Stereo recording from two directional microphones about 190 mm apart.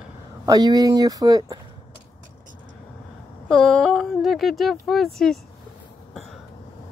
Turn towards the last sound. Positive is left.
turn(degrees=0)  # may be behind; listen again after turning